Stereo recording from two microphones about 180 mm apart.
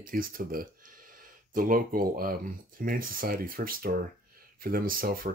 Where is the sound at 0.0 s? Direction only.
55° right (ahead or behind).